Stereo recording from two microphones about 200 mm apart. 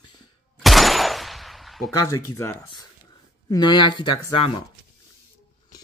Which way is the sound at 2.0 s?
15° left (ahead or behind).